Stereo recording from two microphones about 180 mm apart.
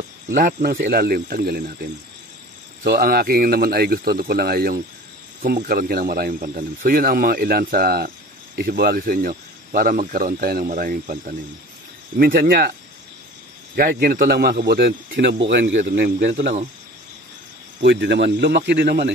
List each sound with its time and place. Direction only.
0.3 s speech: 50° right (ahead or behind)
13.7 s speech: 55° right (ahead or behind); by 15.8 s 75° right (ahead or behind)
15.8 s speech: 55° right (ahead or behind)
17.8 s speech: 70° right (ahead or behind)